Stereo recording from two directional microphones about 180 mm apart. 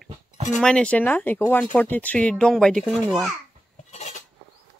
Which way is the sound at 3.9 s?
40° left (ahead or behind).